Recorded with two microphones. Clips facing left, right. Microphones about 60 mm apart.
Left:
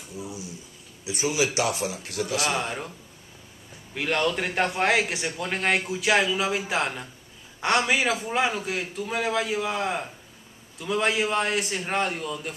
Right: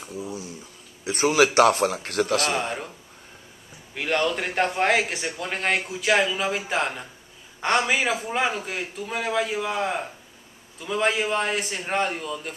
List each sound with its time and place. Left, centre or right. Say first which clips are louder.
1.0 s a man's voice: right 6 dB; right
2.5 s a man's voice: right 2 dB; centre
3.9 s a man's voice: right 1 dB; centre